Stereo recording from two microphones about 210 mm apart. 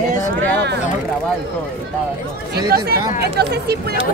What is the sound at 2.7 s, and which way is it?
Speech, 45° right (ahead or behind).